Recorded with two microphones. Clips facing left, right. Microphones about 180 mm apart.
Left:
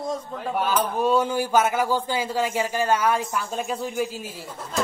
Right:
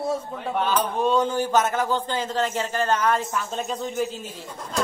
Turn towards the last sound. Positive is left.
turn(degrees=10)  # may be behind; listen again after turning